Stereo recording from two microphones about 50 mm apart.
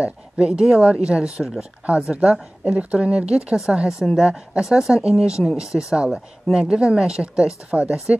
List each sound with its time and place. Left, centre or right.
0.0 s speech: right
5.9 s speech: centre